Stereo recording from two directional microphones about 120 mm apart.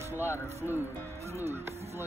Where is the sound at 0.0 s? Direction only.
20° right (ahead or behind).